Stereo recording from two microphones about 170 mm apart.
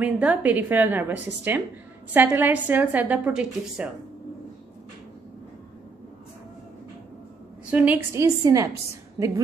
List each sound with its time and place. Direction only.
0.0 s a woman's voice: 10° right (ahead or behind)
7.7 s a woman's voice: 10° right (ahead or behind)